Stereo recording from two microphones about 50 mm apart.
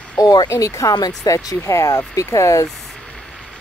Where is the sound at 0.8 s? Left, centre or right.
Left.